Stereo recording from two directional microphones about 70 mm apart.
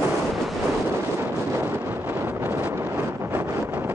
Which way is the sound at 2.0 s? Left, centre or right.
Right.